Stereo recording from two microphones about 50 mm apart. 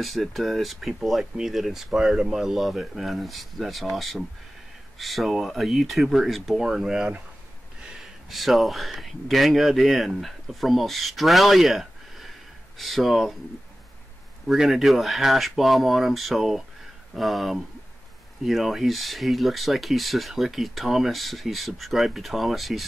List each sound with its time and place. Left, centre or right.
0.0 s speech: centre
6.6 s speech: centre
7.8 s a sound: centre
8.3 s speech: centre
14.5 s speech: centre